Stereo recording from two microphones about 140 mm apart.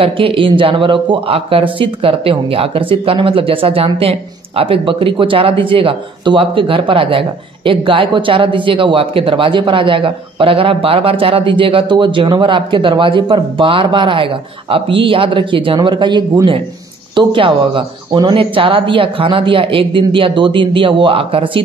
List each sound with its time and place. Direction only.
0.0 s speech: 40° right (ahead or behind)